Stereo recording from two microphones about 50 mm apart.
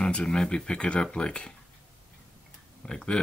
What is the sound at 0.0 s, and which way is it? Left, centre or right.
Speech, centre.